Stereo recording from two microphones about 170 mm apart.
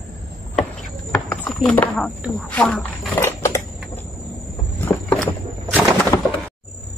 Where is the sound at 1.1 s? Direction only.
5° left (ahead or behind).